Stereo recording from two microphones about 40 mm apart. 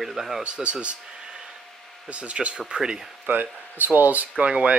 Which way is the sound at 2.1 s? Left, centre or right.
Right.